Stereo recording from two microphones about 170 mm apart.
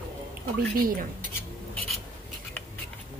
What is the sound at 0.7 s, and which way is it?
Speech, 55° right (ahead or behind).